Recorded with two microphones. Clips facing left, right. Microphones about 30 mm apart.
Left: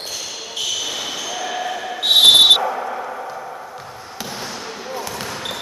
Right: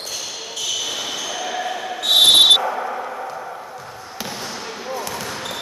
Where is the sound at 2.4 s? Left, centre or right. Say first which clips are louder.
Left 1 dB; centre.